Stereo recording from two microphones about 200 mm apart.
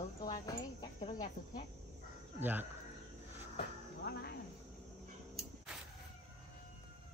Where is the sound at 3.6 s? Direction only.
50° left (ahead or behind).